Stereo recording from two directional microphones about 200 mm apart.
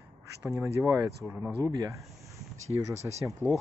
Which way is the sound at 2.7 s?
15° right (ahead or behind).